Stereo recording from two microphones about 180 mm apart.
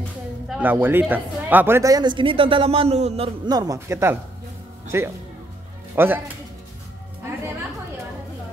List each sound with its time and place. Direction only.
0.5 s speech: 10° right (ahead or behind); by 3.3 s 35° right (ahead or behind)
3.4 s speech: 20° right (ahead or behind)